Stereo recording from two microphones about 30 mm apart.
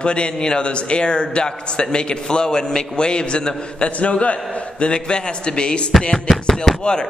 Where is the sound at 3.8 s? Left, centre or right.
Left.